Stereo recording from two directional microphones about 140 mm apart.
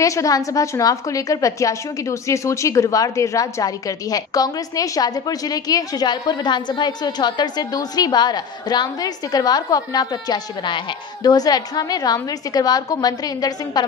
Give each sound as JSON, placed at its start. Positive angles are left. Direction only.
{"t": 0.0, "sound": "a woman's voice", "side_deg": 25}